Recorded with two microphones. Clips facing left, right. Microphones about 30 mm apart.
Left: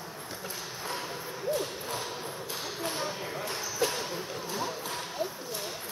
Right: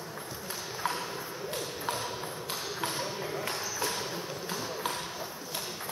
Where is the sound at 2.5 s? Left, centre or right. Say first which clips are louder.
Even; centre.